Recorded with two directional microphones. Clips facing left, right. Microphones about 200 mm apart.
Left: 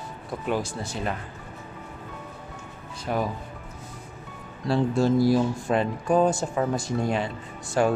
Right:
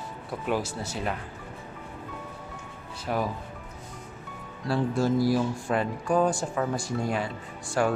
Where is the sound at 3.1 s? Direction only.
Centre (ahead or behind).